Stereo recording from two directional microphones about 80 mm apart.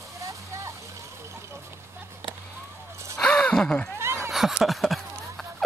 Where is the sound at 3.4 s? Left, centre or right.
Centre.